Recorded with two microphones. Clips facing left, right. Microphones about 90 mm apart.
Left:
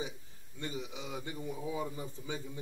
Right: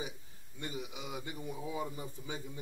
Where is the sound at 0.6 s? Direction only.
15° right (ahead or behind).